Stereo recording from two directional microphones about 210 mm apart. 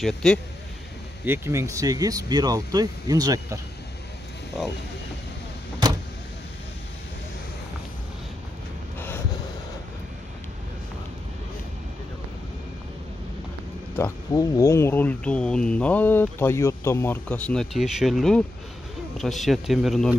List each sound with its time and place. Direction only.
0.0 s speech: centre (ahead or behind)
1.2 s speech: 10° right (ahead or behind)
13.9 s speech: 15° left (ahead or behind)